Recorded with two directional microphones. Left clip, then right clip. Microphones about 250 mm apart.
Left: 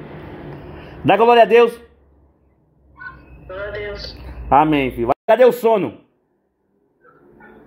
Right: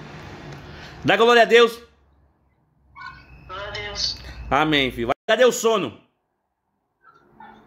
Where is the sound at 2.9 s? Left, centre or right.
Centre.